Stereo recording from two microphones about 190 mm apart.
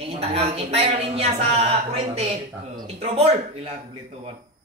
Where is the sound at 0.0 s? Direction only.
30° right (ahead or behind).